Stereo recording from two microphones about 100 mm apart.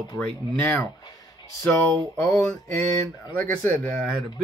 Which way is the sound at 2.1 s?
10° left (ahead or behind).